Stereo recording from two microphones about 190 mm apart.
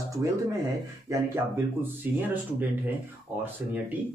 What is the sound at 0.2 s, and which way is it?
Speech, 15° right (ahead or behind).